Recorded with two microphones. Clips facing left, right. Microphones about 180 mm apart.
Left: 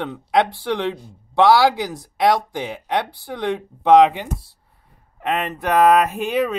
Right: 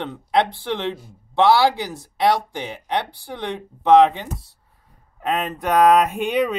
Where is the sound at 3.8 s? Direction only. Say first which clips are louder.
Left 1 dB; 10° left (ahead or behind).